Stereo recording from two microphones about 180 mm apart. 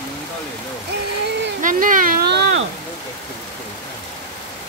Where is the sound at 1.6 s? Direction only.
45° right (ahead or behind); by 2.7 s 70° right (ahead or behind).